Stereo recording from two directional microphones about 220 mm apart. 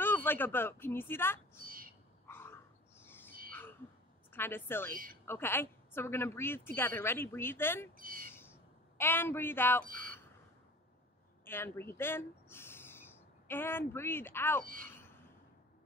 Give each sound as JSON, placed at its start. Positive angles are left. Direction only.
{"t": 0.0, "sound": "speech", "side_deg": 10}
{"t": 2.2, "sound": "wild animals", "side_deg": 10}
{"t": 4.3, "sound": "a woman's voice", "side_deg": 10}
{"t": 8.0, "sound": "speech", "side_deg": -40}
{"t": 8.3, "sound": "a sound", "side_deg": 10}
{"t": 11.4, "sound": "speech", "side_deg": 10}
{"t": 14.6, "sound": "speech", "side_deg": -40}